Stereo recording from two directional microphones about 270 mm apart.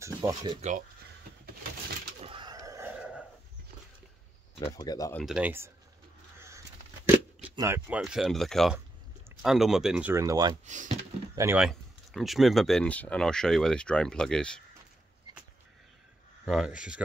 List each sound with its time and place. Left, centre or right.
0.0 s a sound: centre
0.4 s speech: right
2.2 s a sound: centre
4.7 s speech: centre
5.2 s speech: centre
7.4 s speech: centre
10.6 s speech: right
11.3 s speech: centre
16.4 s speech: centre